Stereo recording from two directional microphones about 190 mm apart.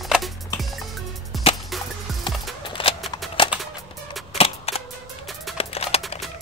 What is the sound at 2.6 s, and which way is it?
Shuffling cards, 25° left (ahead or behind).